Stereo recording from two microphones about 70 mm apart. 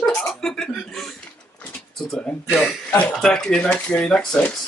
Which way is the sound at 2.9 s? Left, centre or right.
Left.